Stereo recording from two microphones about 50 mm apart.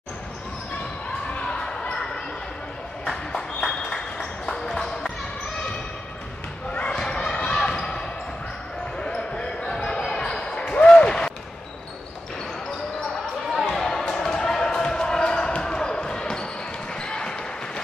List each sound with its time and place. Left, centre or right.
1.3 s basketball bounce: centre
3.3 s a sound: centre
6.7 s basketball bounce: left
9.0 s basketball bounce: centre
13.7 s basketball bounce: centre